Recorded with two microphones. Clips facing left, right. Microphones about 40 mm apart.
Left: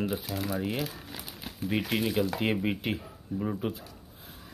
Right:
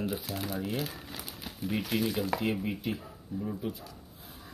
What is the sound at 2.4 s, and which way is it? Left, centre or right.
Speech, left.